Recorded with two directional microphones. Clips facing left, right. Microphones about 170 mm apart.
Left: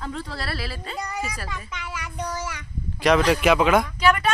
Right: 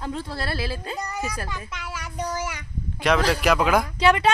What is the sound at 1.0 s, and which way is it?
A child's voice, centre (ahead or behind).